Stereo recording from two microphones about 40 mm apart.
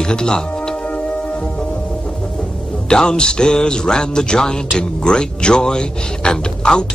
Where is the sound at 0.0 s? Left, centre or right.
Centre.